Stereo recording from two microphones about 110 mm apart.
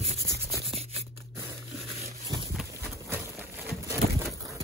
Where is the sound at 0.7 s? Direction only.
65° right (ahead or behind).